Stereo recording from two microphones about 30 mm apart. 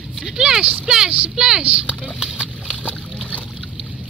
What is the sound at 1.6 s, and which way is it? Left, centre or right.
Speech, right.